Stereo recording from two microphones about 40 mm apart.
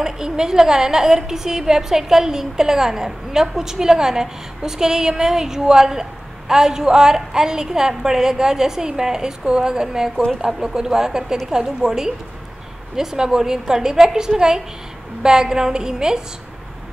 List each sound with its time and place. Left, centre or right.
0.0 s a woman's voice: centre